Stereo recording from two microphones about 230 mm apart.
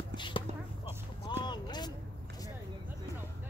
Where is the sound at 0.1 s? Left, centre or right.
Left.